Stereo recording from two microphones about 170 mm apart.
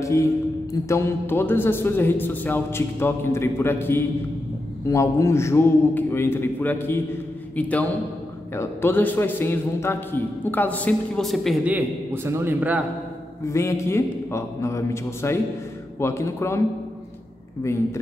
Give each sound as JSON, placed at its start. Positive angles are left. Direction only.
{"t": 0.0, "sound": "a man's voice", "side_deg": 20}
{"t": 13.5, "sound": "a man's voice", "side_deg": 15}